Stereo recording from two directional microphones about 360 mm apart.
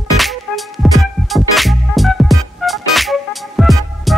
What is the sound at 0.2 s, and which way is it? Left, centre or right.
Music, centre.